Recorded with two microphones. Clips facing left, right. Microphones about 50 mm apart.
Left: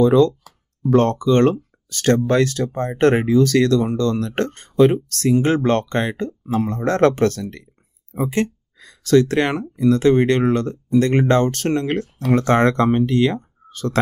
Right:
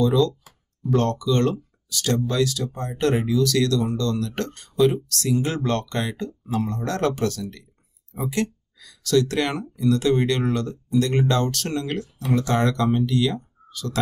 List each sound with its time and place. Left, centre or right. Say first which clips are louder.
0.0 s speech: left 6 dB; left
12.2 s speech: left 6 dB; left